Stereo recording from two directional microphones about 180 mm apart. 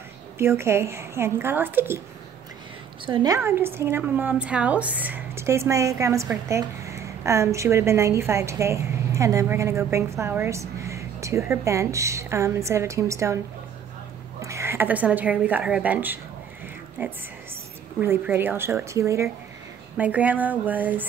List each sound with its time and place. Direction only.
0.4 s a woman's voice: 15° right (ahead or behind)
3.1 s a woman's voice: 25° right (ahead or behind)
3.3 s a woman's voice: 15° right (ahead or behind)
14.4 s a woman's voice: 15° right (ahead or behind)